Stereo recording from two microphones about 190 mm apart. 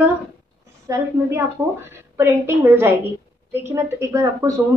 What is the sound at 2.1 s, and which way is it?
A woman's voice, 15° right (ahead or behind).